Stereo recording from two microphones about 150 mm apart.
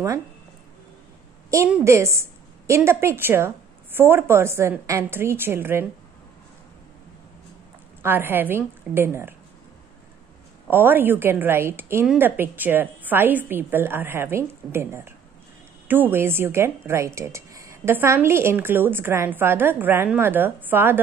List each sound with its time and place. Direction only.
1.9 s speech: 20° right (ahead or behind)
8.0 s speech: 15° right (ahead or behind)
10.7 s speech: 15° right (ahead or behind)